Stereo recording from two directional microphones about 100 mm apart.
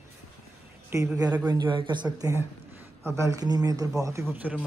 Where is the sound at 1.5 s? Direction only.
45° right (ahead or behind).